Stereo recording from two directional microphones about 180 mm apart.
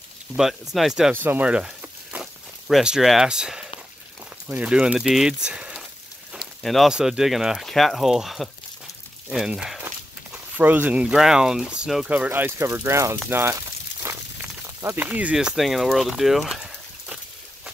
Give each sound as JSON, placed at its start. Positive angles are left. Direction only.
{"t": 0.7, "sound": "speech", "side_deg": 0}
{"t": 14.1, "sound": "a sound", "side_deg": -15}
{"t": 14.8, "sound": "speech", "side_deg": -15}